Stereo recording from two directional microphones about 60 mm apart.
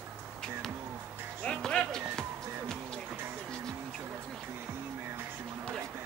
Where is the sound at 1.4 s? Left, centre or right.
Centre.